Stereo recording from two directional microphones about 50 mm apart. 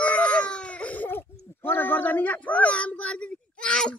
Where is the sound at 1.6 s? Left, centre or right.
Left; by 4.0 s centre.